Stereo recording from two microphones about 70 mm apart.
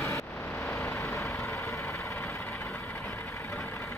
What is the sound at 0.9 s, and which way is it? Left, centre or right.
Vehicle, left.